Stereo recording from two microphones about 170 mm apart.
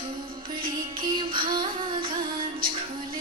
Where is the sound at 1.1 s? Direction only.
30° right (ahead or behind).